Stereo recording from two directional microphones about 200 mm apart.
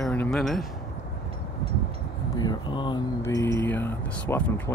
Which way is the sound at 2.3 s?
20° left (ahead or behind).